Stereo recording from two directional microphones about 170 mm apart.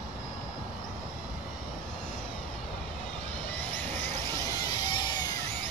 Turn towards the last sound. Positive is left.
turn(degrees=25)  # may be behind; listen again after turning